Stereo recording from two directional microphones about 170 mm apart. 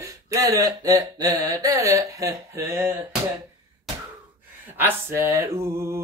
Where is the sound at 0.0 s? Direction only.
20° right (ahead or behind).